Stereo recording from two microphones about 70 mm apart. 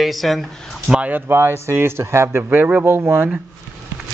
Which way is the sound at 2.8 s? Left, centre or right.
Right.